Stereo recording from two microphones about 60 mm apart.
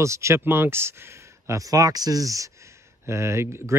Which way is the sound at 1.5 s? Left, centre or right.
Right.